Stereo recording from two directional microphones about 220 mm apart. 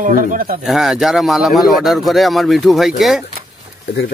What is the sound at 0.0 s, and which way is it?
Speech, 35° right (ahead or behind).